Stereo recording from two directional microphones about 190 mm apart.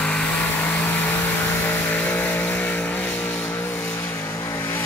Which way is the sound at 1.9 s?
10° left (ahead or behind).